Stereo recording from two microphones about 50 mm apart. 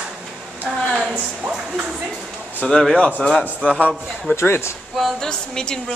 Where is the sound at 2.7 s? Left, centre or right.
Centre.